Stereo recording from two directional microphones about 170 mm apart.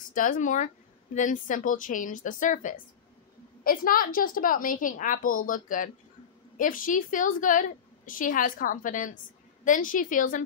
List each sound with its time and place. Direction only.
0.1 s a woman's voice: 50° left (ahead or behind)